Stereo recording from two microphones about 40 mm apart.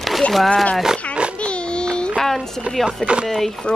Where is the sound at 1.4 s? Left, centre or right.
Left.